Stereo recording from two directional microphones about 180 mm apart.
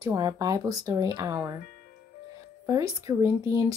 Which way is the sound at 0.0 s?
20° right (ahead or behind).